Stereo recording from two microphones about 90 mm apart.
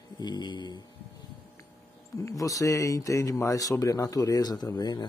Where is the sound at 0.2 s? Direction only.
55° left (ahead or behind).